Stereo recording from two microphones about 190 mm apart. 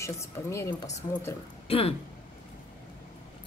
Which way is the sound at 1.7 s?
30° left (ahead or behind).